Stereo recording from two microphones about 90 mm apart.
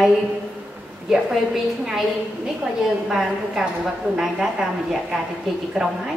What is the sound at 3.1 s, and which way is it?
A woman's voice, 5° right (ahead or behind).